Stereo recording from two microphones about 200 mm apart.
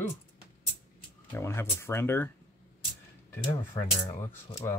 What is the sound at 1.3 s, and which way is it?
Speech, 10° left (ahead or behind).